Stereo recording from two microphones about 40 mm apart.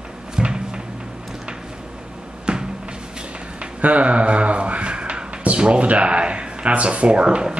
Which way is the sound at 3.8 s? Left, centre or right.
Right.